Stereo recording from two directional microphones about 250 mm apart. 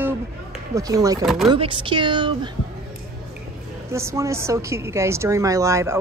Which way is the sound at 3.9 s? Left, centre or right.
Centre.